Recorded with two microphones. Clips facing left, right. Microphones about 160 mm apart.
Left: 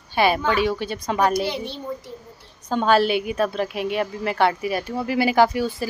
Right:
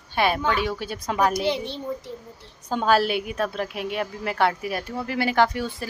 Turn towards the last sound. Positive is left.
turn(degrees=5)  # may be behind; listen again after turning